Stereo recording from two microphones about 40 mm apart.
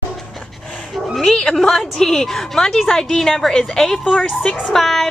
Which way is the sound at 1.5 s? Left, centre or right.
Centre.